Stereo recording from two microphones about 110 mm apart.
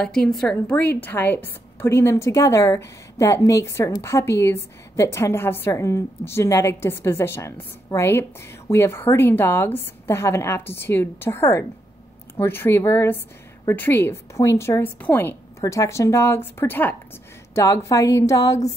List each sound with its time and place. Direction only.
0.0 s a woman's voice: 5° left (ahead or behind)
15.6 s a woman's voice: 30° left (ahead or behind)
17.6 s a woman's voice: 30° left (ahead or behind)